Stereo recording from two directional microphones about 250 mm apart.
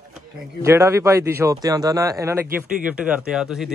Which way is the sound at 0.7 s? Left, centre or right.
Centre.